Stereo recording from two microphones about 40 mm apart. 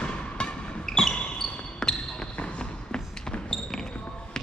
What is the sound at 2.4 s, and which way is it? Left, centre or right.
Basketball bounce, left.